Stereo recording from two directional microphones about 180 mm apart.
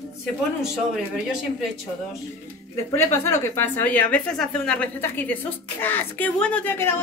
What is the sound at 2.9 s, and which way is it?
Speech, 15° left (ahead or behind).